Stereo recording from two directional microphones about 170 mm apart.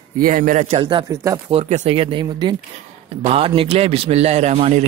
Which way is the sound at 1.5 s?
40° right (ahead or behind).